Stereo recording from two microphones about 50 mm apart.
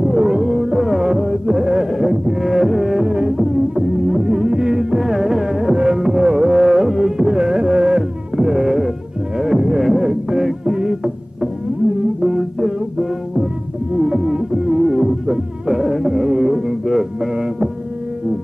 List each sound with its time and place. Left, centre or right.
0.0 s music: centre
12.2 s music: centre
13.9 s music: centre